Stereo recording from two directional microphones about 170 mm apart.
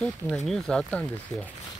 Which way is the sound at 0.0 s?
5° left (ahead or behind).